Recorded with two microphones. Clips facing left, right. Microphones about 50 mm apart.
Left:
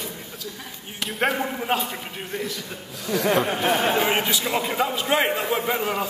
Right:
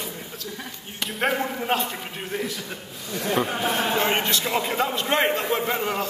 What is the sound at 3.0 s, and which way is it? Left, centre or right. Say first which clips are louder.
Speech: left 7 dB; left.